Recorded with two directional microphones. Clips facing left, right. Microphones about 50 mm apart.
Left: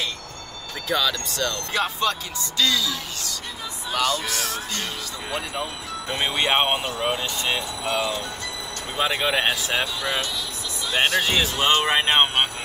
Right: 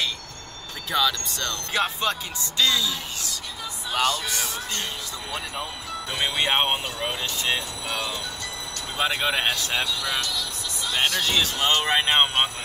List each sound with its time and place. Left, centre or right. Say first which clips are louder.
1.3 s speech: left 4 dB; left
1.7 s speech: right 1 dB; centre
5.6 s speech: left 2 dB; centre
6.5 s speech: left 2 dB; left
7.8 s speech: left 5 dB; left
9.2 s speech: left 3 dB; centre
9.5 s speech: left 2 dB; centre
9.9 s speech: left 1 dB; left
11.9 s speech: left 1 dB; centre